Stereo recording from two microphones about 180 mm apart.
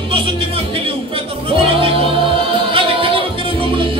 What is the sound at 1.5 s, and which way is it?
Music, 30° right (ahead or behind).